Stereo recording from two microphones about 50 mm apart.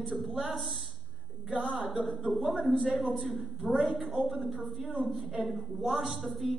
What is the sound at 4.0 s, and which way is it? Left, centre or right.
Speech, right.